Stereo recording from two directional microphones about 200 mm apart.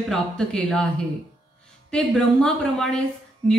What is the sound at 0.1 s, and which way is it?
Speech, 5° left (ahead or behind).